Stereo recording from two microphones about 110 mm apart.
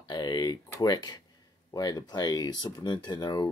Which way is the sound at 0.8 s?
40° left (ahead or behind).